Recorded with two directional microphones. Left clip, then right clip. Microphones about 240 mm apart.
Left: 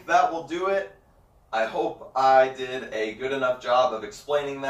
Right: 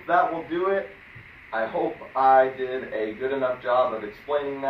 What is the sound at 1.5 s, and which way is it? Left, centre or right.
Speech, left.